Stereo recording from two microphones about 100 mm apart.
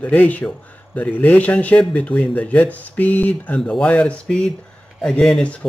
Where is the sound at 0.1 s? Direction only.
15° left (ahead or behind).